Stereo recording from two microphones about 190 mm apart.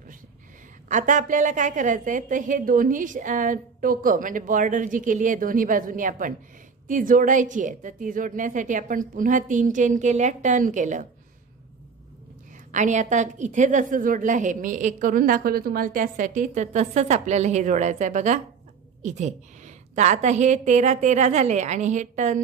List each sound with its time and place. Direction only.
0.8 s a woman's voice: 40° right (ahead or behind)
12.7 s a woman's voice: 40° right (ahead or behind)